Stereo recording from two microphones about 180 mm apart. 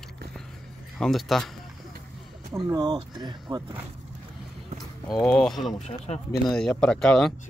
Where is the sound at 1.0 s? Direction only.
Centre (ahead or behind).